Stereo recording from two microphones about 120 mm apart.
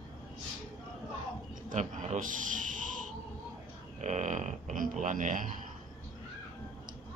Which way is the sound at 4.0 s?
80° right.